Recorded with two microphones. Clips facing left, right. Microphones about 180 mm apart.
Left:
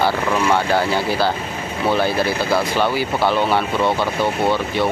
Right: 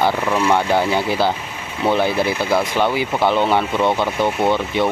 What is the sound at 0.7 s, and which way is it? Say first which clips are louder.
Speech: right 1 dB; 20° right (ahead or behind).